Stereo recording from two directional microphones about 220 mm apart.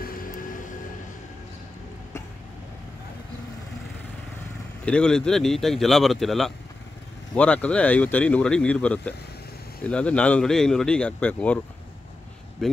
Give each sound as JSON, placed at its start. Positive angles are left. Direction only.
{"t": 0.0, "sound": "vehicle", "side_deg": 40}
{"t": 4.8, "sound": "speech", "side_deg": 5}